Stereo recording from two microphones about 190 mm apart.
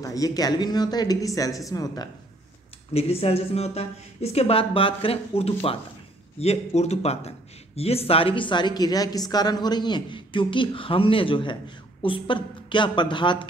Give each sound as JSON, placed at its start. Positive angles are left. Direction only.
{"t": 0.0, "sound": "speech", "side_deg": 20}
{"t": 2.9, "sound": "speech", "side_deg": 30}